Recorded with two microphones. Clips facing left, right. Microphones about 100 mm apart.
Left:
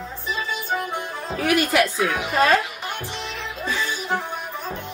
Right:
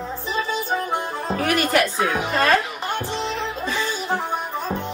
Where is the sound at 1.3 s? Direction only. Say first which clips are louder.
Even; 5° left (ahead or behind).